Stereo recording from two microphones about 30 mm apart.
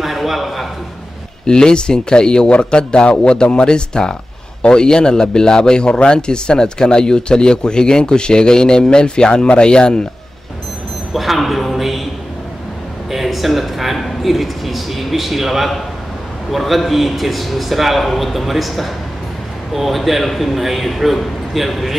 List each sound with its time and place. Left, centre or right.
0.0 s a man's voice: centre
1.4 s a man's voice: left
11.1 s a man's voice: centre
13.1 s a man's voice: centre